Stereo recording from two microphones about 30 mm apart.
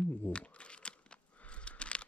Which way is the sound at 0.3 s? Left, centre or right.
Left.